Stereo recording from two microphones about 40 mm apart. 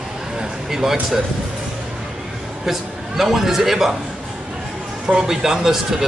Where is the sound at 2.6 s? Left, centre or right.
Centre.